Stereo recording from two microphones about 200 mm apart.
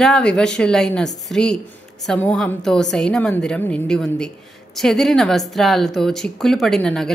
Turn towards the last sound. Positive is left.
turn(degrees=5)  # may be behind; listen again after turning